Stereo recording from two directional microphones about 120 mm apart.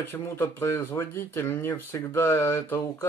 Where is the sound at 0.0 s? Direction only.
20° left (ahead or behind).